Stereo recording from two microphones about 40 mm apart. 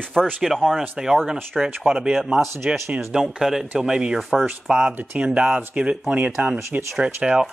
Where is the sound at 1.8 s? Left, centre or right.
Right.